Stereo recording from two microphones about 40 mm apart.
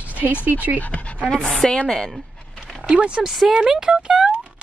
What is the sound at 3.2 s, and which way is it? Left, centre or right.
Speech, centre.